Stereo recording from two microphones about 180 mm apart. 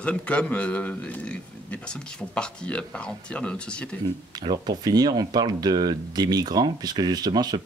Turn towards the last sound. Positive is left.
turn(degrees=-20)  # may be behind; listen again after turning